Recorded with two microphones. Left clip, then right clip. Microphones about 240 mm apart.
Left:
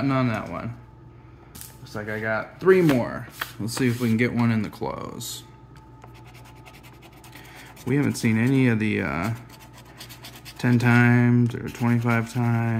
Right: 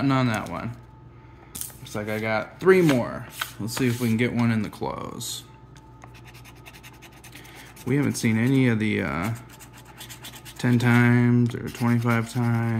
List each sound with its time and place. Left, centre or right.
0.0 s speech: centre
1.9 s speech: right
2.7 s speech: centre
7.8 s speech: centre
9.9 s scratch: centre
11.7 s speech: centre